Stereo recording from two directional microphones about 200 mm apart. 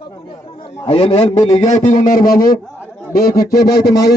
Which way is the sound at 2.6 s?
10° right (ahead or behind).